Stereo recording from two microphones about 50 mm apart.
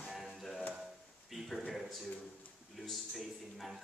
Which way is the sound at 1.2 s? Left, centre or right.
Centre.